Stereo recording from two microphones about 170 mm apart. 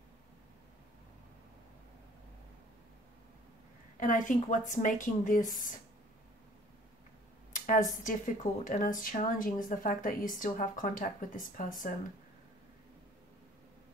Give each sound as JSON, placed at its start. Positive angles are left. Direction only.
{"t": 4.0, "sound": "speech", "side_deg": 50}
{"t": 7.5, "sound": "speech", "side_deg": 50}